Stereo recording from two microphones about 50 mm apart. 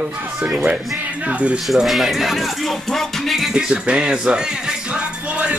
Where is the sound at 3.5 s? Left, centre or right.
Centre.